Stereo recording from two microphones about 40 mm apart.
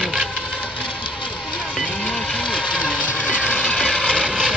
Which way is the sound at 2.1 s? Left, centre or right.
Left.